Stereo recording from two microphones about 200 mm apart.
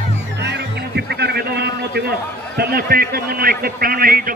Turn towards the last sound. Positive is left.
turn(degrees=-45)  # may be behind; listen again after turning